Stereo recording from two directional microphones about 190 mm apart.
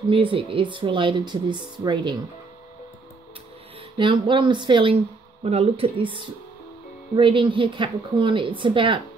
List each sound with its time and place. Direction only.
0.1 s speech: 30° right (ahead or behind)
4.0 s speech: 25° right (ahead or behind)